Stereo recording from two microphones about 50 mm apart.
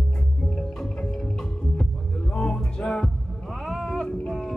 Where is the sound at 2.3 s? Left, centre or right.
Centre.